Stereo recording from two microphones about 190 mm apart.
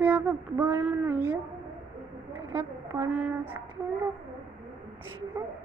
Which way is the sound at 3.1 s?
5° right (ahead or behind).